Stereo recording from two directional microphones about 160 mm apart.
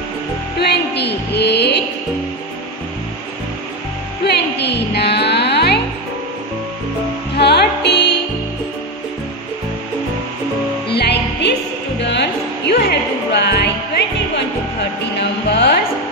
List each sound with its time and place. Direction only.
0.6 s music: 90° left
4.2 s music: 90° left
7.3 s music: 90° left
10.9 s music: 90° left